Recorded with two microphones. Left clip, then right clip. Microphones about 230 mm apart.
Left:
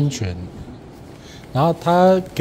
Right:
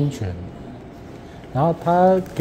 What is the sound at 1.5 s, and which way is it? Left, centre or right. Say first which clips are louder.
Speech: left 2 dB; centre.